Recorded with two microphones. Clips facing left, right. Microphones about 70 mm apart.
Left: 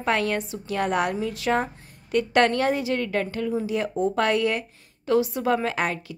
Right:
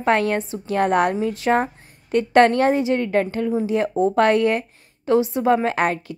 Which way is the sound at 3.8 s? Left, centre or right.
Right.